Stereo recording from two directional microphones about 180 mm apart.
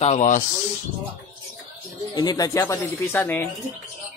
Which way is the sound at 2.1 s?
20° left (ahead or behind).